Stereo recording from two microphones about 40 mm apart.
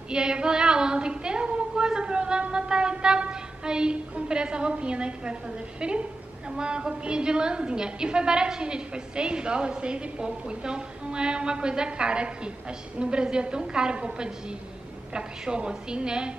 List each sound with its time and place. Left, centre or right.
0.1 s a woman's voice: right